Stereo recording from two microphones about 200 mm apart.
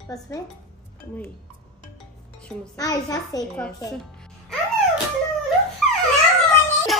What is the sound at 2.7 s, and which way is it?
Speech, 20° left (ahead or behind).